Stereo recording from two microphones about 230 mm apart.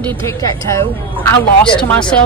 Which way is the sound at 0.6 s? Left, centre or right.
Centre.